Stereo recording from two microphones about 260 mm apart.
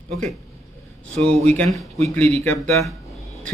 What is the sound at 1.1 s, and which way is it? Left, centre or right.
Speech, right.